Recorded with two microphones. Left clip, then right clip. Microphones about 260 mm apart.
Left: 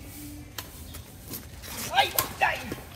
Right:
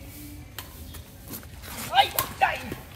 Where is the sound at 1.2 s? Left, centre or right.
Centre.